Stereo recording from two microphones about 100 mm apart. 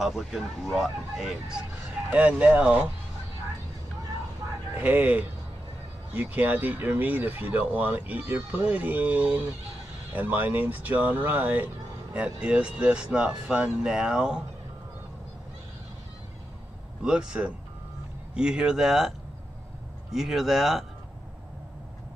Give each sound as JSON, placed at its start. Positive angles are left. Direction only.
{"t": 0.0, "sound": "speech", "side_deg": -5}
{"t": 4.7, "sound": "speech", "side_deg": -15}
{"t": 17.0, "sound": "speech", "side_deg": -10}